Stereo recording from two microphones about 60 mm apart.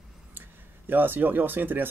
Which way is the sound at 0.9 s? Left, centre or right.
Right.